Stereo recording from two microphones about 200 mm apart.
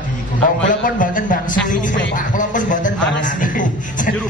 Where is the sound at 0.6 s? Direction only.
40° left (ahead or behind).